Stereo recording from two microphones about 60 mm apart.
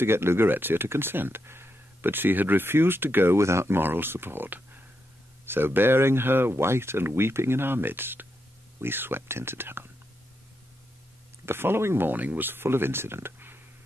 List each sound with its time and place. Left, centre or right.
0.0 s speech: right
3.3 s speech: right
11.4 s speech: right